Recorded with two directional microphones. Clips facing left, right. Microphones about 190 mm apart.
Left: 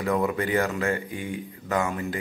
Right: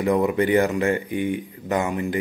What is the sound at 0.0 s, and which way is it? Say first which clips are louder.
Speech: right 5 dB; 20° right (ahead or behind).